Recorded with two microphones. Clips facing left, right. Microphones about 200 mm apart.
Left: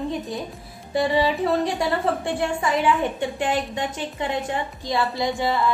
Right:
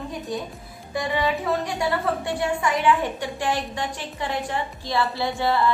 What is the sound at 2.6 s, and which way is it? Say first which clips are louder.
A woman's voice: even; 20° left (ahead or behind).